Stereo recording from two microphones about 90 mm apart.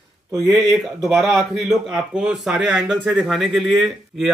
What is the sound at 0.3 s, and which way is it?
Speech, 45° right (ahead or behind).